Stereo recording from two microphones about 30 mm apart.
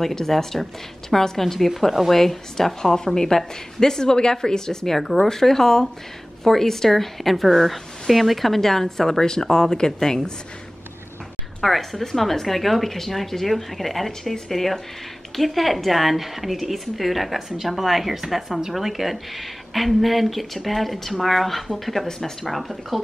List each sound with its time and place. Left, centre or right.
0.3 s speech: centre
1.4 s a woman's voice: centre
11.6 s speech: centre